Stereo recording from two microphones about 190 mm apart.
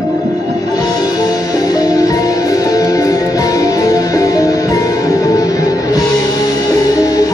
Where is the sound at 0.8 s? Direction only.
20° left (ahead or behind).